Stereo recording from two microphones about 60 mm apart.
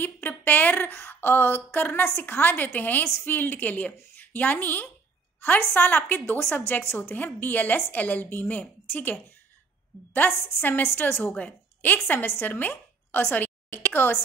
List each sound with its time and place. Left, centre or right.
0.0 s a woman's voice: left
11.3 s a woman's voice: left